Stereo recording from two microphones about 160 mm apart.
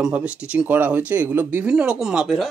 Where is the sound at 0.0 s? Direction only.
5° right (ahead or behind).